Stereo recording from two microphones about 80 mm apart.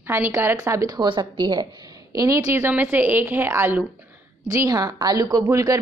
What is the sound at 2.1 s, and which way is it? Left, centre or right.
Speech, right.